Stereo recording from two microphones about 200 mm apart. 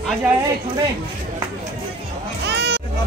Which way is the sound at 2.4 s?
55° right (ahead or behind).